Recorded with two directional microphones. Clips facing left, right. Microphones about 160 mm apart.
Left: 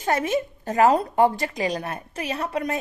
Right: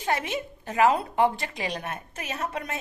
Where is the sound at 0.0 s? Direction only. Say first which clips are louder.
Left 5 dB; 45° left (ahead or behind).